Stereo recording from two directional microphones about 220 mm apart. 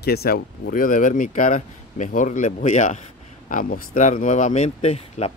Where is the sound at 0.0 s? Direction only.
45° left (ahead or behind).